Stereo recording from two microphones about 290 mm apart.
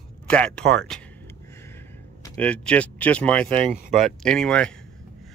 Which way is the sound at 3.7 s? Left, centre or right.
Right.